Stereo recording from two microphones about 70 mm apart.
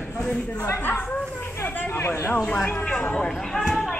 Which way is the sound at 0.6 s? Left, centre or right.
Left.